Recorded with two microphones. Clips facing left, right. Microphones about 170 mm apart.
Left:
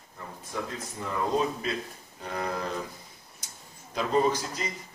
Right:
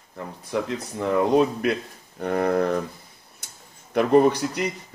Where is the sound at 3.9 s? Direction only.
65° right (ahead or behind).